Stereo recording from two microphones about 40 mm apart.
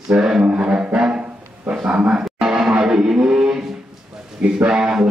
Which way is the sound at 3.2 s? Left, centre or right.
Right.